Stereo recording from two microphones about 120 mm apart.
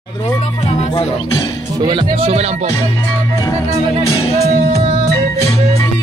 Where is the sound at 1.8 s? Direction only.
40° right (ahead or behind); by 2.7 s 65° right (ahead or behind).